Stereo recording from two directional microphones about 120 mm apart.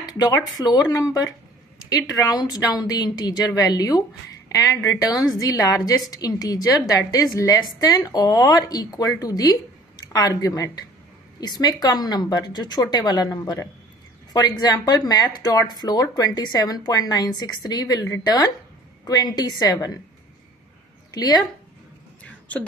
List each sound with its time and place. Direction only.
0.2 s a woman's voice: 30° left (ahead or behind)
21.1 s speech: 35° left (ahead or behind)
22.2 s a sound: 10° left (ahead or behind)